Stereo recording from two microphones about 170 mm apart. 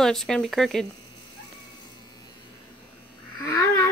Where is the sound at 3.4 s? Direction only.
20° left (ahead or behind).